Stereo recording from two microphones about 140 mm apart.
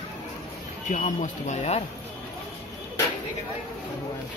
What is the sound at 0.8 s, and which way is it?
Speech, 65° left (ahead or behind).